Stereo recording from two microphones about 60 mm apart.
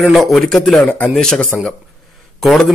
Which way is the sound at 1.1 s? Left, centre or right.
Centre.